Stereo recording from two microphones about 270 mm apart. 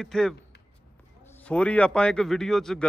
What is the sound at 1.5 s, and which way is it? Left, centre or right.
Speech, centre.